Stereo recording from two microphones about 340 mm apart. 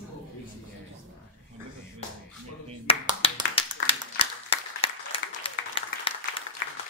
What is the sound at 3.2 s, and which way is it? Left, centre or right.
Clapping, centre.